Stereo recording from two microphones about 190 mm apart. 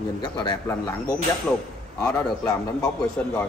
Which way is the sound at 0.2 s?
25° left (ahead or behind).